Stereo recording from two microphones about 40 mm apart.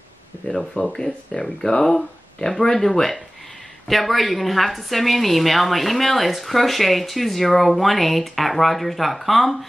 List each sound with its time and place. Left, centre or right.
0.5 s speech: centre